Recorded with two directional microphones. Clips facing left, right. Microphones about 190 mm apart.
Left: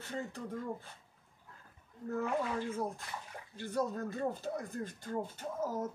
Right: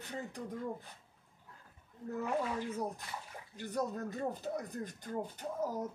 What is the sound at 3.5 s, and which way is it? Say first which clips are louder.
Speech: left 2 dB; 15° right (ahead or behind).